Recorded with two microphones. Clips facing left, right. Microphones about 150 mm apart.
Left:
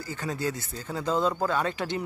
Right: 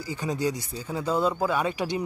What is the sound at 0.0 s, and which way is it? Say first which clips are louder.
Speech: right 3 dB; 15° right (ahead or behind).